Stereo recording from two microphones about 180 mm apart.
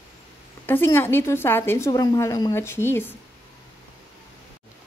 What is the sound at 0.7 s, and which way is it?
A woman's voice, 10° left (ahead or behind).